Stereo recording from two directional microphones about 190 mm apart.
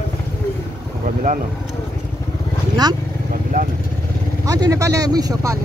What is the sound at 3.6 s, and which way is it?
Vehicle, 50° right (ahead or behind).